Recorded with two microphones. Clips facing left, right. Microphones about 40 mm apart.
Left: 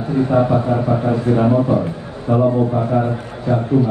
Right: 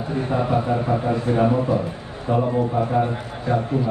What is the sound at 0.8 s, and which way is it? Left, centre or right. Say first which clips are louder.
Speech: left 4 dB; left.